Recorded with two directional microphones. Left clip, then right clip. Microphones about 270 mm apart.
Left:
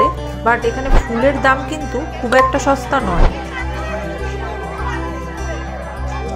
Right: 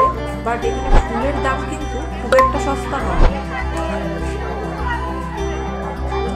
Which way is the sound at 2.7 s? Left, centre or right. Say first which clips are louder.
Left 6 dB; left.